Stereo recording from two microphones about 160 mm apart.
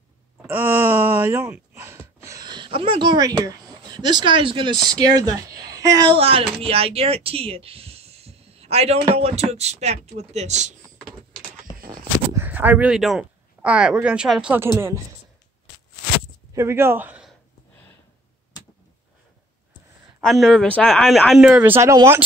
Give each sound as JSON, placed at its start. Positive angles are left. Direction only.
{"t": 0.4, "sound": "speech", "side_deg": -10}
{"t": 12.4, "sound": "speech", "side_deg": -10}
{"t": 16.5, "sound": "speech", "side_deg": -15}
{"t": 20.2, "sound": "speech", "side_deg": 0}